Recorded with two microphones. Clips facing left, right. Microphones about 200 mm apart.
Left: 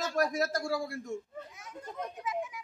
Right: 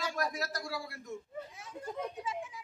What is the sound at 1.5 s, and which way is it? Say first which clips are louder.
A child's voice: right 2 dB; 30° right (ahead or behind).